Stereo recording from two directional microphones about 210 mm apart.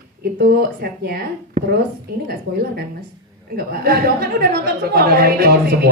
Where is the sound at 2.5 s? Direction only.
45° right (ahead or behind).